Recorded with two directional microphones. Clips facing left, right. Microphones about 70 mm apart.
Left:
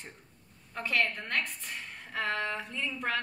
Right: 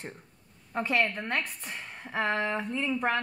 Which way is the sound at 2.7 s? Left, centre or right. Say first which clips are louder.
Right 5 dB; right.